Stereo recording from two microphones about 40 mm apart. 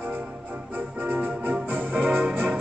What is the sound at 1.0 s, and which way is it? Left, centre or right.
Organ, right.